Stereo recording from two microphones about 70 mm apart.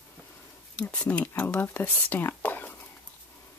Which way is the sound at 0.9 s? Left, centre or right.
Centre.